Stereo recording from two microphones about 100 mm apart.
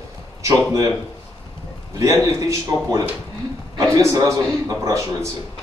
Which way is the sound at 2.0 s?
30° right (ahead or behind).